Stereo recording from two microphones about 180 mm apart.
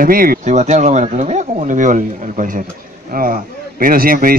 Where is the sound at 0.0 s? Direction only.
55° right (ahead or behind).